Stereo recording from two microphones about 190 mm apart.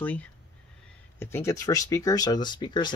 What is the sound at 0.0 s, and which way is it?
Speech, 10° left (ahead or behind).